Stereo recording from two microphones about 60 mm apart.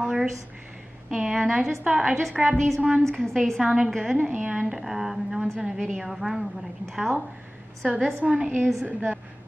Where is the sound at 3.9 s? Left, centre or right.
Centre.